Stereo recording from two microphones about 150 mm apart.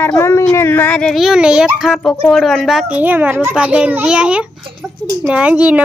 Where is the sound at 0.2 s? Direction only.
20° left (ahead or behind); by 3.0 s centre (ahead or behind).